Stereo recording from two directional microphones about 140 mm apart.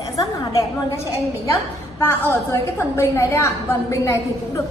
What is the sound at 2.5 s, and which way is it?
Speech, 20° left (ahead or behind).